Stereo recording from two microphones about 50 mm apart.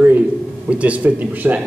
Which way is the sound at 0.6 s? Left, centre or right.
Right.